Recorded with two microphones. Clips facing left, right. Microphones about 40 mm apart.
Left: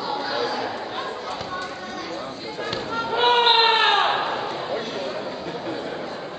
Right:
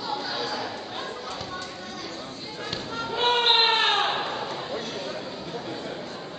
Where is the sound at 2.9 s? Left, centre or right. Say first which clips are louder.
Left 5 dB; centre.